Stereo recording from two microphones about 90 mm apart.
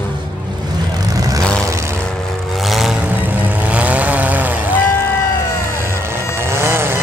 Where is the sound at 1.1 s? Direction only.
40° right (ahead or behind).